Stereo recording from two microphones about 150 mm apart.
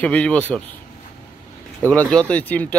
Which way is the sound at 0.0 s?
10° left (ahead or behind).